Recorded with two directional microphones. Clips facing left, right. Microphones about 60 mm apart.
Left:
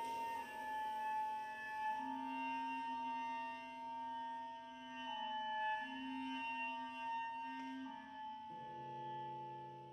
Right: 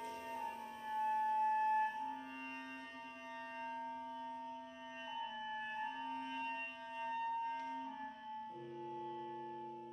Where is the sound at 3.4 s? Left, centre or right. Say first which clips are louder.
Right 1 dB; right.